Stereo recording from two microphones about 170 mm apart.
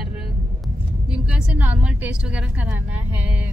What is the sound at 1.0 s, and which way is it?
A woman's voice, 5° right (ahead or behind).